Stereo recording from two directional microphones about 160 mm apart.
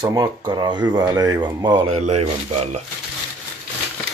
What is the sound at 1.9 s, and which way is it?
Speech, 40° right (ahead or behind).